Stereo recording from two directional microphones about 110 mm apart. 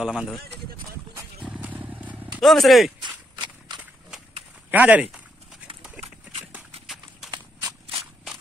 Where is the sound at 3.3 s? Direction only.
45° right (ahead or behind).